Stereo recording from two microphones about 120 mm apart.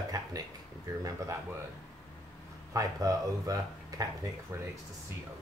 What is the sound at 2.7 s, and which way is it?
Speech, 30° right (ahead or behind).